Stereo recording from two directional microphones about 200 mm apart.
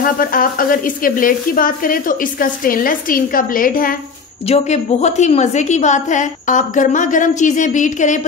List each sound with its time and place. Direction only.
0.0 s a woman's voice: 45° left (ahead or behind)